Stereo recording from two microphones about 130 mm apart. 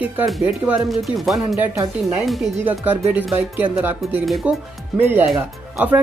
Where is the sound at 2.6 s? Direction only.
15° right (ahead or behind).